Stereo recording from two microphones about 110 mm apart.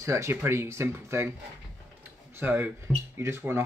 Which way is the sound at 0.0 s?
25° right (ahead or behind).